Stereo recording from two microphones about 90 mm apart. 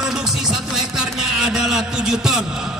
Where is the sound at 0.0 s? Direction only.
5° right (ahead or behind).